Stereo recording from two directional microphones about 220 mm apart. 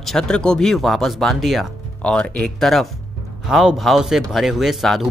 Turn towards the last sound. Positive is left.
turn(degrees=0)  # may be behind; listen again after turning